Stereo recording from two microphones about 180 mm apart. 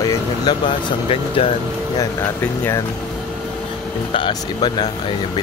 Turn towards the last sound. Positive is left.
turn(degrees=25)  # may be behind; listen again after turning